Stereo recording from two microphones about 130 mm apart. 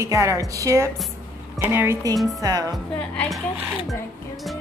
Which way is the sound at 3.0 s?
5° left (ahead or behind).